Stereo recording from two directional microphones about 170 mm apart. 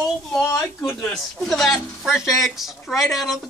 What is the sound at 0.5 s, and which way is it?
Speech, 15° left (ahead or behind).